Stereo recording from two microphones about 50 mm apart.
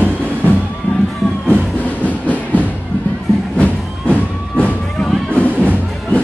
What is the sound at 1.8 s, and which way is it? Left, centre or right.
Train, left.